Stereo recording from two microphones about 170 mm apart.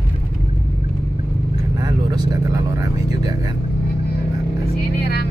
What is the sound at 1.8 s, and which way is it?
Speech, 25° right (ahead or behind).